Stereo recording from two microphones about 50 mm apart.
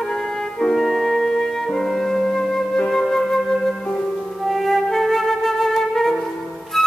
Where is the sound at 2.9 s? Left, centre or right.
Centre.